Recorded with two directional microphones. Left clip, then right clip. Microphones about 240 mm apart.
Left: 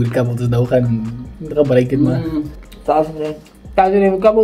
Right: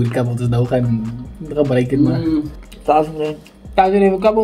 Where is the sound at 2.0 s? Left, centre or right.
Centre.